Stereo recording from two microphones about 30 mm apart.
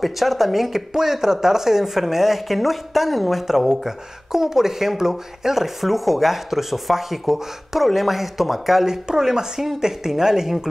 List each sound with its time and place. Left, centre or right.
0.0 s speech: centre
8.8 s speech: centre